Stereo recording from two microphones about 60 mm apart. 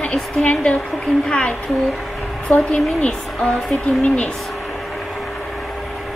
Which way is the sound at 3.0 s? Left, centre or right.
Centre.